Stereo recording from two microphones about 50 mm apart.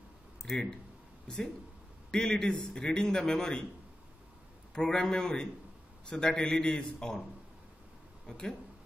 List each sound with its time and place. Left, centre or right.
0.4 s a man's voice: centre
4.7 s a man's voice: centre
8.3 s a man's voice: centre